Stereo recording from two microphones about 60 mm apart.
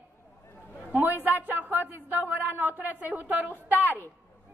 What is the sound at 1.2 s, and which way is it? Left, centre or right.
Speech, right.